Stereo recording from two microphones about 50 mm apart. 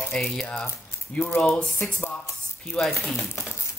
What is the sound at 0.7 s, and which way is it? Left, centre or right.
Speech, left.